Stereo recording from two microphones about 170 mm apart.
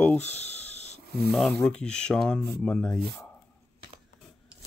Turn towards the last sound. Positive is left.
turn(degrees=5)  # may be behind; listen again after turning